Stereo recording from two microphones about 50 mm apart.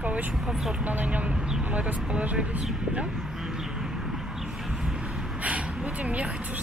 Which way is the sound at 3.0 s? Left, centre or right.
Centre.